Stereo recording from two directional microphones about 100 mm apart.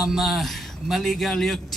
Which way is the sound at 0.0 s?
Centre (ahead or behind).